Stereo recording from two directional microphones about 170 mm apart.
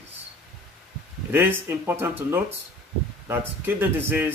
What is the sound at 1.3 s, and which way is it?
Speech, 15° right (ahead or behind).